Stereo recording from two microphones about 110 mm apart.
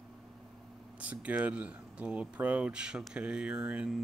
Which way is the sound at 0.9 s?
10° right (ahead or behind).